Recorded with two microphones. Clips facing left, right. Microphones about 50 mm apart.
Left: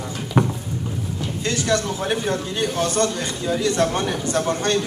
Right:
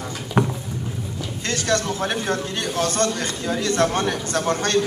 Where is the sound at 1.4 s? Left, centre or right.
Right.